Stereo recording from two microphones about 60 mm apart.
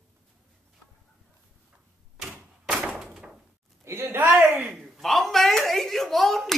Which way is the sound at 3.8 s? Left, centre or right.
Right.